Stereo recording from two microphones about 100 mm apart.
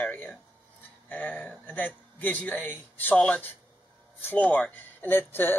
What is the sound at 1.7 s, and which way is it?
Speech, 15° left (ahead or behind).